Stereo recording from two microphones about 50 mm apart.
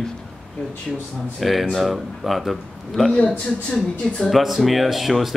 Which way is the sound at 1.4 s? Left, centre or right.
Centre.